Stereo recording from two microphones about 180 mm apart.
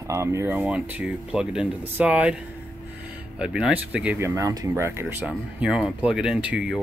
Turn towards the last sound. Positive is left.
turn(degrees=-5)  # may be behind; listen again after turning